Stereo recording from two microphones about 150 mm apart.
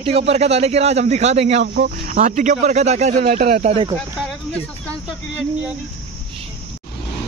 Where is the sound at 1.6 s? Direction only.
90° right.